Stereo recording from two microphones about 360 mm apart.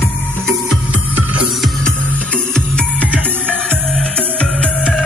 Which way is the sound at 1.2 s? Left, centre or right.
Centre.